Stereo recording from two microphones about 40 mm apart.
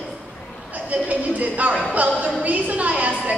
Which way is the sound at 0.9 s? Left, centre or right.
Right.